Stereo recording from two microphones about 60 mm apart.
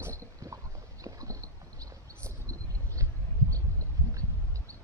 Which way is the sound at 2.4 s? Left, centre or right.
Right.